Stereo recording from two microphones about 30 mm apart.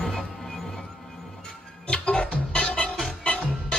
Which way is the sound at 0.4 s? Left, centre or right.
Centre.